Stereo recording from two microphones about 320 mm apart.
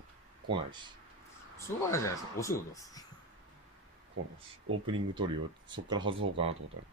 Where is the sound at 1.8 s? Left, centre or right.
Centre.